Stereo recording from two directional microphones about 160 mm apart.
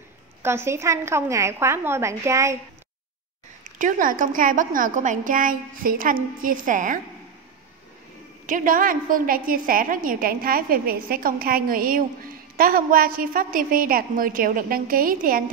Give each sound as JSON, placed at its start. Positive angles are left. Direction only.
{"t": 0.4, "sound": "a woman's voice", "side_deg": -15}
{"t": 3.7, "sound": "a woman's voice", "side_deg": -55}
{"t": 8.5, "sound": "a woman's voice", "side_deg": -55}